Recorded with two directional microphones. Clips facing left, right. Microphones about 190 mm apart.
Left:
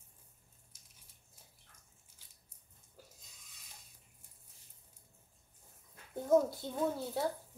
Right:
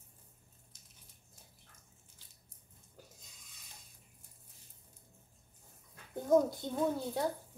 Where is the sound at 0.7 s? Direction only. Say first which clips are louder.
Right 3 dB; 10° left (ahead or behind).